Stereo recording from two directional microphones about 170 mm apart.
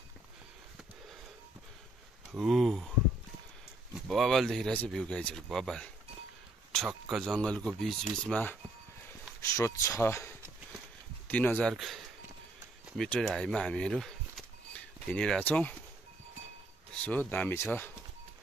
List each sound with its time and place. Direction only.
2.3 s speech: centre (ahead or behind)
3.9 s speech: centre (ahead or behind)
7.3 s speech: 5° left (ahead or behind)
9.6 s speech: 15° left (ahead or behind)
17.0 s speech: 10° left (ahead or behind)